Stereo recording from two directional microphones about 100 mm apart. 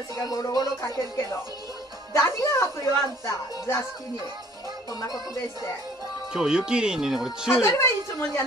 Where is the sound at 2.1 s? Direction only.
30° left (ahead or behind).